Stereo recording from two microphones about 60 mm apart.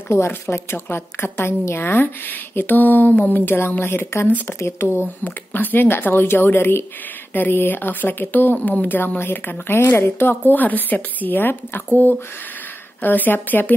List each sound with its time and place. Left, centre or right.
0.3 s a woman's voice: left
5.2 s a woman's voice: left
13.0 s a woman's voice: left